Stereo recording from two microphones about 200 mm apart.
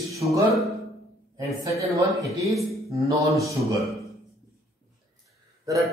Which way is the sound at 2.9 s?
15° right (ahead or behind).